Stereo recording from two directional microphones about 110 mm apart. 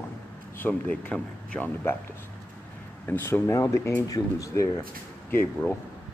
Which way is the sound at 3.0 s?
20° left (ahead or behind).